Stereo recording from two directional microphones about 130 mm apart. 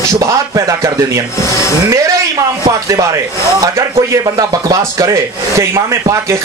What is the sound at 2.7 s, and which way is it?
Speech, 25° right (ahead or behind).